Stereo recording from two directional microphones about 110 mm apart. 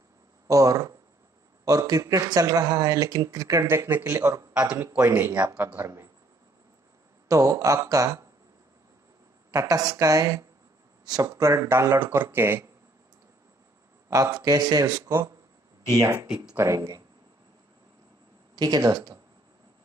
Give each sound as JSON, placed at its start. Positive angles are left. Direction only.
{"t": 0.5, "sound": "speech", "side_deg": -30}
{"t": 4.2, "sound": "speech", "side_deg": -35}
{"t": 5.1, "sound": "speech", "side_deg": -15}
{"t": 7.2, "sound": "speech", "side_deg": -30}
{"t": 9.5, "sound": "speech", "side_deg": -30}
{"t": 14.1, "sound": "speech", "side_deg": -30}
{"t": 16.5, "sound": "speech", "side_deg": -30}
{"t": 18.6, "sound": "speech", "side_deg": -35}